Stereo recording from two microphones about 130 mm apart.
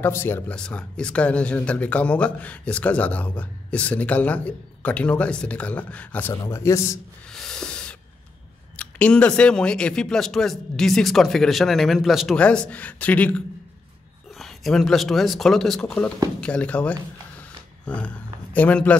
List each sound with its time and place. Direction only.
0.0 s speech: 15° left (ahead or behind)
0.6 s a man's voice: 5° left (ahead or behind); by 7.0 s 20° left (ahead or behind)
7.2 s owl: 5° left (ahead or behind)
8.7 s speech: 10° left (ahead or behind)
12.4 s speech: 10° left (ahead or behind)